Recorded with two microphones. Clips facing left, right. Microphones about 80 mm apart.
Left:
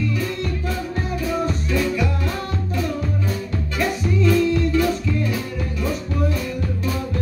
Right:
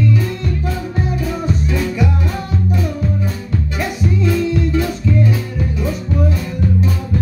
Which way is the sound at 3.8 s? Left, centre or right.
Centre.